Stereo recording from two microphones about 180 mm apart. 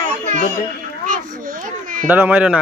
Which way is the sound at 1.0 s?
45° right (ahead or behind).